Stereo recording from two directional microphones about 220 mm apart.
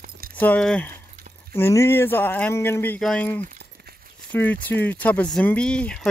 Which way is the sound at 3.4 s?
40° right (ahead or behind).